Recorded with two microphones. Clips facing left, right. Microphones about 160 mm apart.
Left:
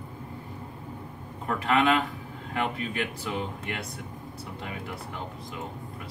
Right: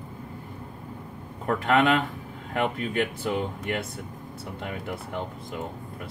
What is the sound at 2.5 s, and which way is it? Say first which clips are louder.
Speech: right 3 dB; 45° right (ahead or behind).